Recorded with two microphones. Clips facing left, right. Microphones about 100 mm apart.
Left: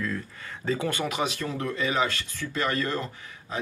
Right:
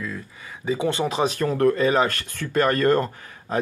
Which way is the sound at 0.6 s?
20° right (ahead or behind).